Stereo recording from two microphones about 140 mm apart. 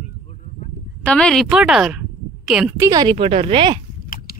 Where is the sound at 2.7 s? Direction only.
20° right (ahead or behind).